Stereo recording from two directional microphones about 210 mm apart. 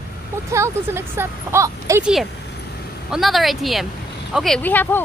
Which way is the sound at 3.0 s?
Centre (ahead or behind).